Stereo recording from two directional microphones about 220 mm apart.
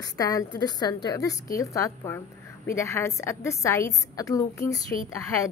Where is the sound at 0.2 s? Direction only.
15° left (ahead or behind).